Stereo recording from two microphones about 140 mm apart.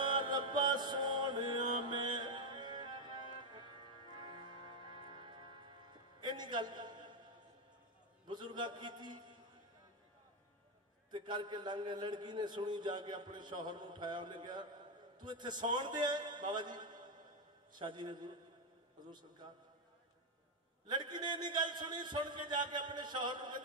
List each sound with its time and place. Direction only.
0.0 s mantra: 35° right (ahead or behind)
6.2 s a sound: 30° right (ahead or behind)
8.3 s a man's voice: 30° right (ahead or behind)
11.1 s a man's voice: 30° right (ahead or behind)
20.8 s a man's voice: 30° right (ahead or behind)